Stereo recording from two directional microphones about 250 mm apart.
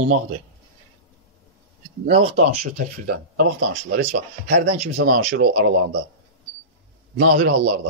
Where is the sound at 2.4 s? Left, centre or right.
Right.